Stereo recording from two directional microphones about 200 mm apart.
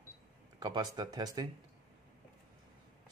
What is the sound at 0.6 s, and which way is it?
Speech, 20° right (ahead or behind).